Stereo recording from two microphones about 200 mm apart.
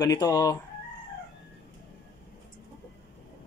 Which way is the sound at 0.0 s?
20° left (ahead or behind).